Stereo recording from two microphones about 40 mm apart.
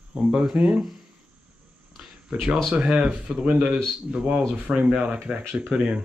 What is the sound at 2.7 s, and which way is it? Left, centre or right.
Speech, right.